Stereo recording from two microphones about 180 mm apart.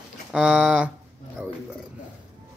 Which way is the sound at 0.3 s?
5° right (ahead or behind).